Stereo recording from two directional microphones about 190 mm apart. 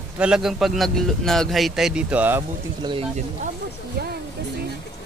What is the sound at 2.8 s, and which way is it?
Speech, 25° right (ahead or behind).